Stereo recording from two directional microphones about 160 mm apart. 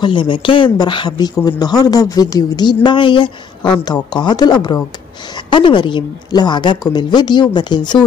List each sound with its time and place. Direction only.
0.0 s speech: 30° left (ahead or behind)